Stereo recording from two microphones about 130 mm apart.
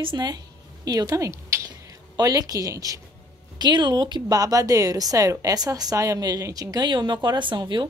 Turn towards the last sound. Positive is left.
turn(degrees=-35)  # may be behind; listen again after turning